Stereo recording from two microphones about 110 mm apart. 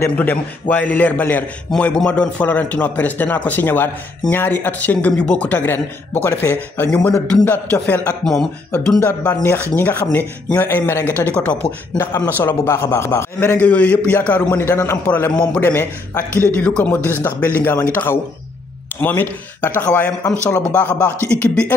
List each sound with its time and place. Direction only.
0.1 s a man's voice: 15° left (ahead or behind)
8.2 s speech: 5° left (ahead or behind)
9.0 s a man's voice: 15° left (ahead or behind)